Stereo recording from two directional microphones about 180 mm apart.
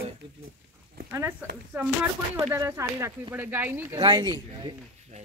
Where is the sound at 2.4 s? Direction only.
15° right (ahead or behind).